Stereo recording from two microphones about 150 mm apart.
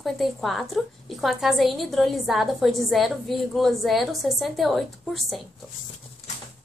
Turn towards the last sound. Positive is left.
turn(degrees=0)  # may be behind; listen again after turning